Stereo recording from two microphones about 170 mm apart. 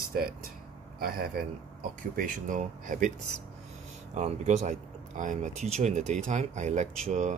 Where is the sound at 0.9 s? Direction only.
60° right (ahead or behind).